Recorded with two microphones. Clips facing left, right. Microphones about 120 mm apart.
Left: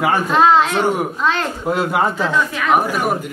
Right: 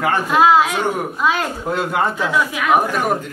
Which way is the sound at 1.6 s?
5° left (ahead or behind).